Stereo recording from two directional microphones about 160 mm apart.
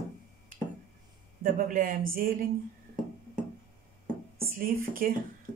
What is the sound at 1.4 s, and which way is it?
Speech, 60° right (ahead or behind).